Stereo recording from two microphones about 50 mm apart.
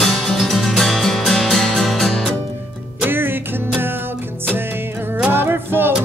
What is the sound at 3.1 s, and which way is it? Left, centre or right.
Music, right.